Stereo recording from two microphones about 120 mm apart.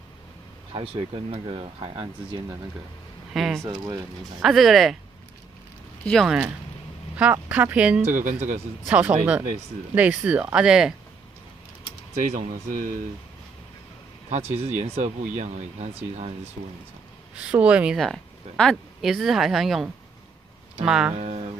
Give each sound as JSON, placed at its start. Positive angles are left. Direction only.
{"t": 0.7, "sound": "speech", "side_deg": -50}
{"t": 3.3, "sound": "speech", "side_deg": 0}
{"t": 3.6, "sound": "speech", "side_deg": -30}
{"t": 4.4, "sound": "speech", "side_deg": 0}
{"t": 6.2, "sound": "speech", "side_deg": -5}
{"t": 8.0, "sound": "speech", "side_deg": -90}
{"t": 8.8, "sound": "speech", "side_deg": -10}
{"t": 12.2, "sound": "speech", "side_deg": -90}
{"t": 14.3, "sound": "speech", "side_deg": -60}
{"t": 17.4, "sound": "speech", "side_deg": -10}
{"t": 17.9, "sound": "speech", "side_deg": 5}
{"t": 21.1, "sound": "speech", "side_deg": -70}